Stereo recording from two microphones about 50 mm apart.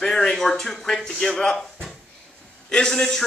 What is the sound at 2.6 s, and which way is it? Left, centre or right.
Speech, centre.